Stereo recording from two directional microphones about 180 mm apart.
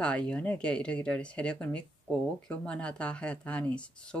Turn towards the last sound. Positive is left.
turn(degrees=5)  # may be behind; listen again after turning